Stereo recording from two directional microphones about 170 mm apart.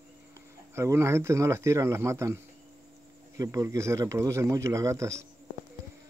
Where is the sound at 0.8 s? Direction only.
15° right (ahead or behind).